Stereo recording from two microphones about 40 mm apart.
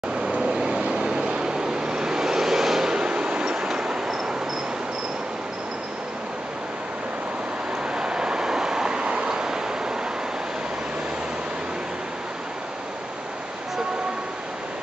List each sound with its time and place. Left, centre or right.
0.4 s vehicle: right
2.9 s a sound: right
3.5 s train: centre
7.8 s vehicle: right
9.3 s waves: centre